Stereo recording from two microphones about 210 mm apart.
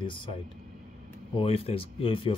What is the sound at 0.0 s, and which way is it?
Speech, 25° left (ahead or behind).